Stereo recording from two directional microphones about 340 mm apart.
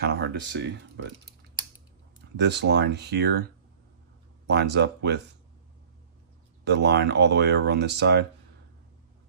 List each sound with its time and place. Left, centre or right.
0.0 s speech: right
2.3 s speech: right
4.5 s speech: right
6.6 s speech: right